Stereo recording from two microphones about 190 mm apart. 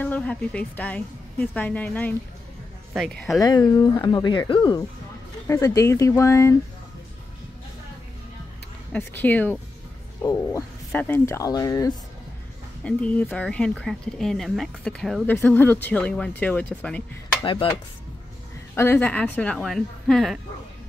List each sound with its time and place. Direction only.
0.0 s a woman's voice: 5° left (ahead or behind)
3.3 s speech: 20° left (ahead or behind)
5.5 s a woman's voice: 15° left (ahead or behind)
8.9 s a woman's voice: 10° left (ahead or behind)
12.8 s a woman's voice: 5° left (ahead or behind)
17.4 s speech: 25° left (ahead or behind)
18.8 s a woman's voice: 10° left (ahead or behind)